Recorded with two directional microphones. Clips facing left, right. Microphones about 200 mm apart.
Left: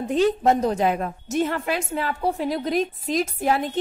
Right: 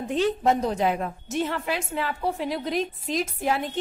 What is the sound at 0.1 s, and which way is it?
A woman's voice, 40° left (ahead or behind).